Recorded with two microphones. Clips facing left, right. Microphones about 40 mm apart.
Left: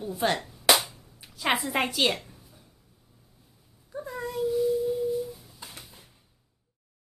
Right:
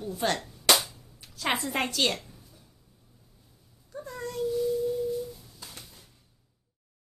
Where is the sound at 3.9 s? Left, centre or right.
Centre.